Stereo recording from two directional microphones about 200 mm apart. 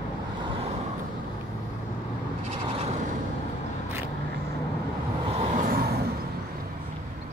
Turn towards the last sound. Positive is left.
turn(degrees=-40)  # may be behind; listen again after turning